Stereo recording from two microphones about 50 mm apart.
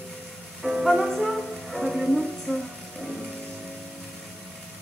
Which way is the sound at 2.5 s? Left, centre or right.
Left.